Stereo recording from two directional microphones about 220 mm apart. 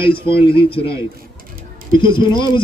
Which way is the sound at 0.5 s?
25° left (ahead or behind).